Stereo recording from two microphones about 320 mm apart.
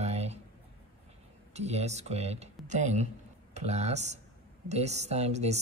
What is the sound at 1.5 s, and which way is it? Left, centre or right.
Speech, centre.